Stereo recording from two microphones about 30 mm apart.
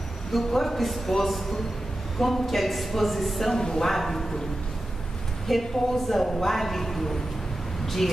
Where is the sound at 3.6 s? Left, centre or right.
Centre.